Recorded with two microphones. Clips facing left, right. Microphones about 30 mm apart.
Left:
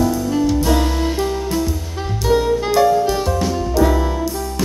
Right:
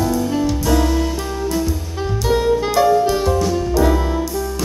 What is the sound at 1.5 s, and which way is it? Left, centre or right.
Music, centre.